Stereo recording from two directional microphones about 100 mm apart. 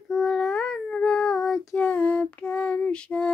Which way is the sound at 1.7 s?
15° left (ahead or behind).